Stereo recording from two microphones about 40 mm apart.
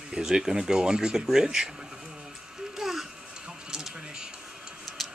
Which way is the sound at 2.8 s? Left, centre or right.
Centre.